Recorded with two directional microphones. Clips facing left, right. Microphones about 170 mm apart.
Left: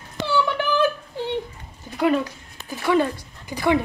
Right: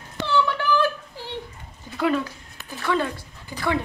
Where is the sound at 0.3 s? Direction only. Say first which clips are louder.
Even; 20° left (ahead or behind).